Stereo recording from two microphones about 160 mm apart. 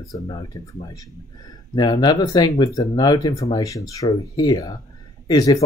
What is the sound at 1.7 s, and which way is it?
Speech, 30° left (ahead or behind).